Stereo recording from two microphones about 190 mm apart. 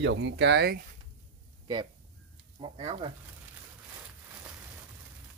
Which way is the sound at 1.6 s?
25° right (ahead or behind).